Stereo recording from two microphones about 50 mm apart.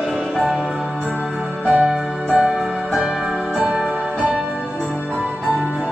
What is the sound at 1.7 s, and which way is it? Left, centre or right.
Music, centre.